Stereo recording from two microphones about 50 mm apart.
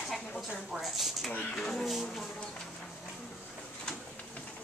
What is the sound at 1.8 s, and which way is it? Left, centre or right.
Speech, centre.